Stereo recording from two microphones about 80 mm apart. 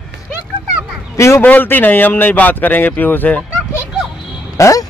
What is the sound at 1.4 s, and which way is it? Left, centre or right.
Speech, left.